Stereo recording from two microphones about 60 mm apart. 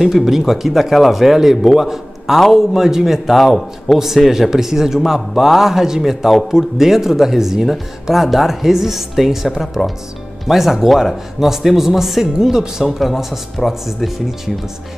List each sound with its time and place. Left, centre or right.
0.0 s a man's voice: centre